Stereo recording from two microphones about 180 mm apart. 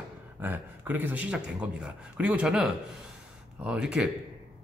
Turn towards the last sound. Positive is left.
turn(degrees=-5)  # may be behind; listen again after turning